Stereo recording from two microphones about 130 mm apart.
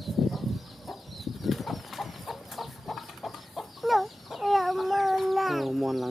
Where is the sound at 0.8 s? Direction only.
Centre (ahead or behind).